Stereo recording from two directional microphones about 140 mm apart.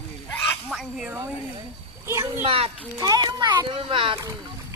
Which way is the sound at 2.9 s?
25° right (ahead or behind).